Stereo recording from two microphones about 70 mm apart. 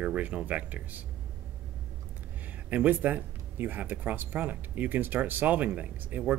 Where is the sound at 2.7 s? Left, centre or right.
Right.